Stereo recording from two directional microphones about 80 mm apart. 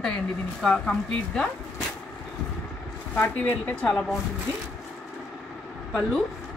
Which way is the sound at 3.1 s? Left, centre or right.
Centre.